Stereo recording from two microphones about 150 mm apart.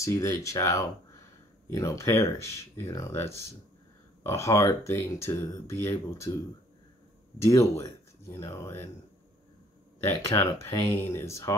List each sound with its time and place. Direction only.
0.0 s speech: 20° left (ahead or behind)
4.2 s speech: 20° left (ahead or behind)
7.4 s speech: 20° left (ahead or behind)
10.3 s speech: 20° left (ahead or behind)